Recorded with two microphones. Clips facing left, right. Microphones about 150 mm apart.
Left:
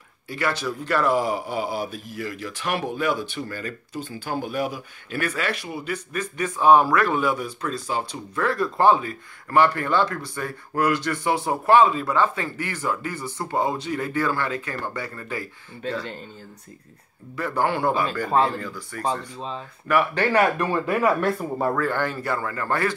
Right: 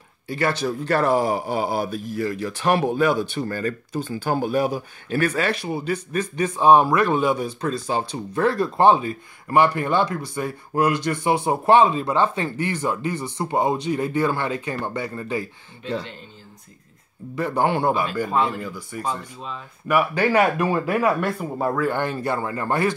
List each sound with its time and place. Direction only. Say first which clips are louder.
0.3 s speech: right 3 dB; 30° right (ahead or behind)
17.4 s speech: right 2 dB; 20° right (ahead or behind)
18.3 s speech: left 3 dB; 35° left (ahead or behind)
18.6 s speech: right 2 dB; 10° right (ahead or behind)
19.0 s speech: left 3 dB; 30° left (ahead or behind)
19.9 s speech: right 1 dB; 10° right (ahead or behind)
21.7 s speech: right 2 dB; 15° right (ahead or behind)